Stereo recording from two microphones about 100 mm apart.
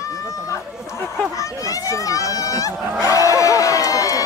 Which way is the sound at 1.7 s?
35° left (ahead or behind).